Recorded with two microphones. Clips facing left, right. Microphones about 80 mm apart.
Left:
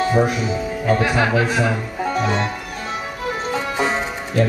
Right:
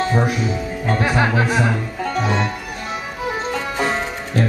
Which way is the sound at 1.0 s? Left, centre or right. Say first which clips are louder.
Even; right.